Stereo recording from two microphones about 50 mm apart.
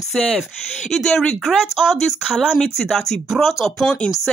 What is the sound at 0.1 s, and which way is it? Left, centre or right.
Speech, centre.